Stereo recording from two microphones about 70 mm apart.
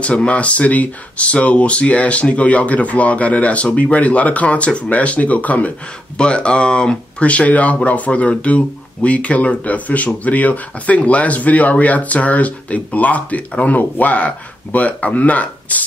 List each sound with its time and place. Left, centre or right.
0.0 s speech: centre